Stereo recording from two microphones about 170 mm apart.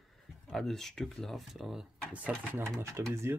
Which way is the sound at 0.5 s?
Centre (ahead or behind).